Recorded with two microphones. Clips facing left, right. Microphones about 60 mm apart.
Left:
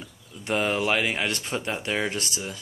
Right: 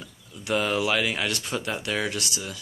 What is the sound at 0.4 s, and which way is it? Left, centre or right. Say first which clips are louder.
Speech: even; left.